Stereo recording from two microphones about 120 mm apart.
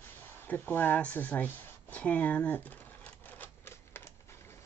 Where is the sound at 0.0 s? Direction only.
15° left (ahead or behind).